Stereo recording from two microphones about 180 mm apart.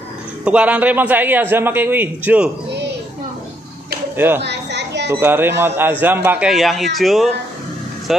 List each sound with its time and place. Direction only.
0.5 s a man's voice: 5° right (ahead or behind)
4.4 s children playing: 70° right (ahead or behind)
5.2 s a man's voice: 10° right (ahead or behind)
6.5 s speech: centre (ahead or behind)
8.1 s vehicle: centre (ahead or behind)